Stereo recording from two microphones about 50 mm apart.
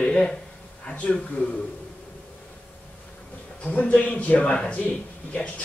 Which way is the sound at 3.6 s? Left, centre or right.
Left.